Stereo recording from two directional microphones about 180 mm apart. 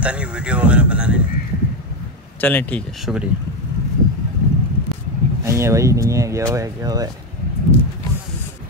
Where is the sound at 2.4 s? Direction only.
10° left (ahead or behind).